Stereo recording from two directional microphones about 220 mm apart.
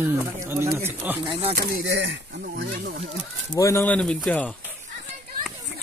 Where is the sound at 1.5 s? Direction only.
45° right (ahead or behind).